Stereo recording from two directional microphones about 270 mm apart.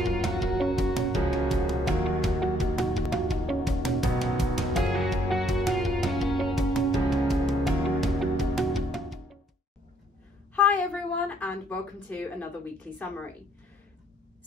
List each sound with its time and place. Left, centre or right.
0.0 s music: centre
10.5 s a sound: centre
12.9 s a woman's voice: centre